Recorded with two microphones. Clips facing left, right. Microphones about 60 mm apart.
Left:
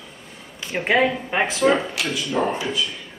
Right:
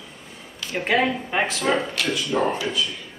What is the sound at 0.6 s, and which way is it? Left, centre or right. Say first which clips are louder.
Speech: left 2 dB; centre.